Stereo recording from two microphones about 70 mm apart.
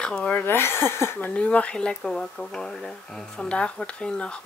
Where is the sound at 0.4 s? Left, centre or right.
Left.